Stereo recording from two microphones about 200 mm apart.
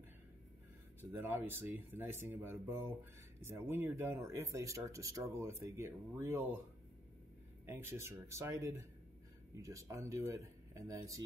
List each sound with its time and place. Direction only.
1.1 s speech: 10° right (ahead or behind)
7.6 s speech: 10° right (ahead or behind)